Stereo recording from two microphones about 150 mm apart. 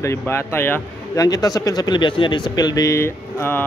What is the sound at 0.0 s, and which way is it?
A man's voice, 15° left (ahead or behind).